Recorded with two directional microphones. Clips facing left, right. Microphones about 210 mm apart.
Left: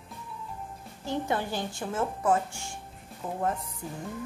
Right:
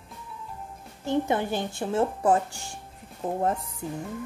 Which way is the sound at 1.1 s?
20° right (ahead or behind).